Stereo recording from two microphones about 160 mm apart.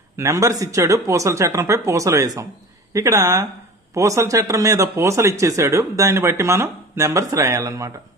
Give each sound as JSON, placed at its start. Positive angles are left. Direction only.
{"t": 0.2, "sound": "speech", "side_deg": -20}